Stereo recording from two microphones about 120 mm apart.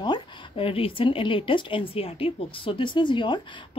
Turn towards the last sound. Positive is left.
turn(degrees=40)  # may be behind; listen again after turning